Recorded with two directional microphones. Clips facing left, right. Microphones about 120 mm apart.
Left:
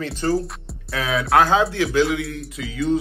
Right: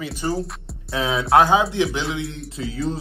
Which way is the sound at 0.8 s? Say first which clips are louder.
Right 1 dB; 25° right (ahead or behind).